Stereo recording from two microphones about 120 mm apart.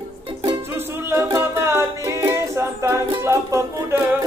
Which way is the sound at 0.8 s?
20° right (ahead or behind).